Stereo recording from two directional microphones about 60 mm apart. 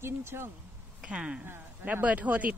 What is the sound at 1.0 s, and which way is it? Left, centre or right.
Speech, centre.